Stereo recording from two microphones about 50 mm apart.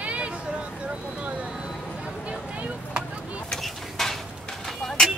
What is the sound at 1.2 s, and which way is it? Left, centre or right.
Vehicle, right.